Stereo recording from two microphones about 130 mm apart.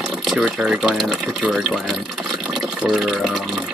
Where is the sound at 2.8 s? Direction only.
Centre (ahead or behind).